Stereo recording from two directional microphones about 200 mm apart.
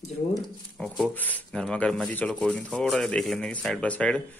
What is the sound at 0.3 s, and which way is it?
Speech, centre (ahead or behind).